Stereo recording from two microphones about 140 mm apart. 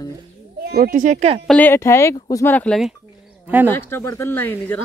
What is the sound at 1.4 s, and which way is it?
Speech, 10° left (ahead or behind).